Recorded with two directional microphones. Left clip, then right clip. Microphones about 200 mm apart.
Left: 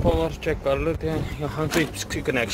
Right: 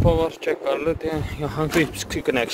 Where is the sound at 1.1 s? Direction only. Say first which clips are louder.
Right 1 dB; 15° right (ahead or behind).